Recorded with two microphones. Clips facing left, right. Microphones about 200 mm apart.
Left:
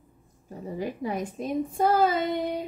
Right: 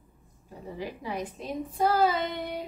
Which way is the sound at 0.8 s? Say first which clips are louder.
Left 4 dB; 50° left (ahead or behind).